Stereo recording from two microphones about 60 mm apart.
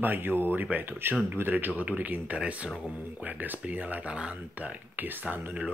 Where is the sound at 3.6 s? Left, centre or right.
Right.